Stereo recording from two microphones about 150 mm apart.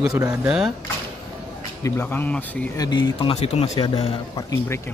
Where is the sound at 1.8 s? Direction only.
15° left (ahead or behind).